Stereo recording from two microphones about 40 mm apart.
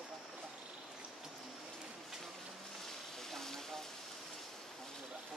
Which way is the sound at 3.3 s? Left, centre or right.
Centre.